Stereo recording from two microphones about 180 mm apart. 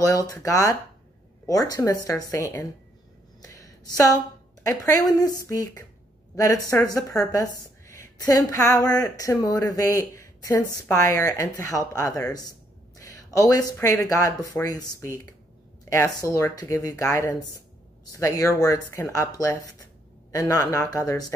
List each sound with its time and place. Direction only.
0.0 s speech: 20° left (ahead or behind)
3.4 s a sound: 20° left (ahead or behind)
4.6 s speech: 20° left (ahead or behind)